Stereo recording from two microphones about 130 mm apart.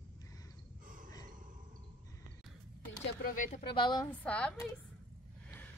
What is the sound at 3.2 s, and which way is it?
Speech, 80° left.